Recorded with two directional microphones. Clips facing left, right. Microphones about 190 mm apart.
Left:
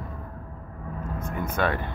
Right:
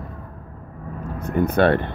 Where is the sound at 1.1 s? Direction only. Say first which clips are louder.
Right 10 dB; 65° right (ahead or behind).